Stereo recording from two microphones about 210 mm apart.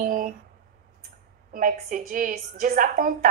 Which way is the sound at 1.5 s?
40° right (ahead or behind).